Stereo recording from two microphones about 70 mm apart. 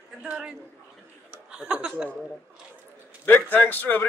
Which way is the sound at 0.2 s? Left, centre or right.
Centre.